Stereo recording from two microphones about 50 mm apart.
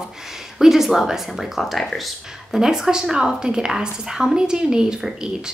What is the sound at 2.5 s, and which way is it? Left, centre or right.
A woman's voice, centre.